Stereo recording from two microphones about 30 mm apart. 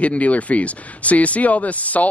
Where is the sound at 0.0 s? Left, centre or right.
Left.